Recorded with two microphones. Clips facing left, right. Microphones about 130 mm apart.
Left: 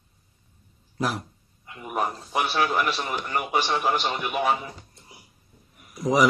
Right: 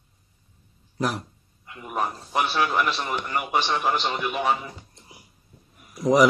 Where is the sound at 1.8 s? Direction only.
10° left (ahead or behind).